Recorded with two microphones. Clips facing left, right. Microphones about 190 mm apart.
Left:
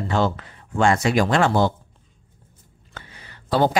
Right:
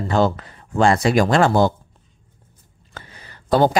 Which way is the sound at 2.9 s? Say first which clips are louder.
Right 2 dB; 40° right (ahead or behind).